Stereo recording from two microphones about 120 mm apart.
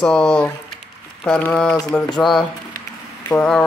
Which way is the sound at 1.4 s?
10° left (ahead or behind).